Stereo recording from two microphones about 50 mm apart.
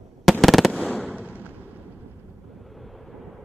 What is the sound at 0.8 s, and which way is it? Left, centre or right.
Fireworks, left.